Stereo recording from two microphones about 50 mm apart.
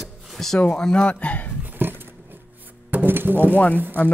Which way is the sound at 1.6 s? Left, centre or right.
Right.